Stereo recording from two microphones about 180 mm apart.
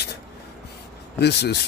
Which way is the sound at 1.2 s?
70° left (ahead or behind).